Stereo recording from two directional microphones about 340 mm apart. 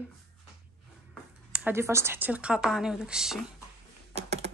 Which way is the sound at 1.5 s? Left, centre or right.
Centre.